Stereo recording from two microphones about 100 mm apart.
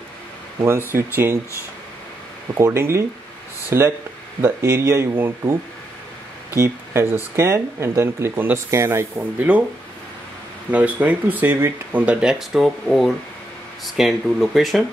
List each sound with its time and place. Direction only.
0.6 s speech: 25° right (ahead or behind)
2.6 s speech: 25° right (ahead or behind)
6.5 s speech: 25° right (ahead or behind)
10.7 s speech: 15° right (ahead or behind); by 14.9 s centre (ahead or behind)